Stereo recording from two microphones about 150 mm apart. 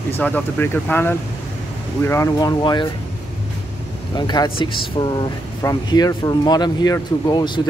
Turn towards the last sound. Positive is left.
turn(degrees=30)  # may be behind; listen again after turning